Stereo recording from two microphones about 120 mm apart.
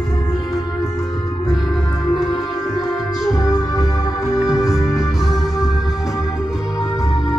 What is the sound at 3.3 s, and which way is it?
Music, 30° left (ahead or behind).